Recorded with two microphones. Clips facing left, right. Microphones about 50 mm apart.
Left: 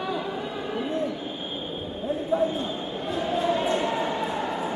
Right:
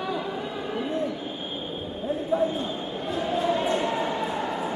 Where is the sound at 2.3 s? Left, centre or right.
Centre.